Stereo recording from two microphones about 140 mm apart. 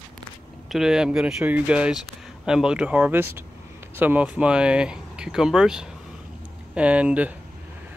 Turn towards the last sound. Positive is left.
turn(degrees=-10)  # may be behind; listen again after turning